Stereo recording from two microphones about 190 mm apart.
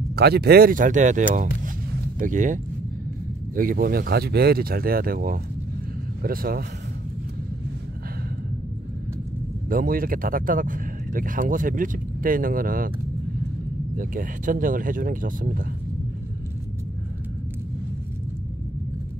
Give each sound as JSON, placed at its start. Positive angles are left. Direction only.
{"t": 0.1, "sound": "speech", "side_deg": -55}
{"t": 9.7, "sound": "speech", "side_deg": -50}
{"t": 13.9, "sound": "speech", "side_deg": -45}